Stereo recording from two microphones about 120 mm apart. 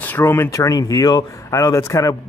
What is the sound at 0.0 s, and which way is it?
Speech, 20° left (ahead or behind).